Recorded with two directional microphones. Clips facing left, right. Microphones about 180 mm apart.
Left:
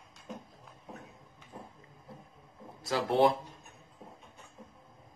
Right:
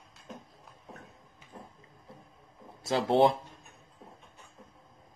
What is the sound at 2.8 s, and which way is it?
Speech, 25° right (ahead or behind).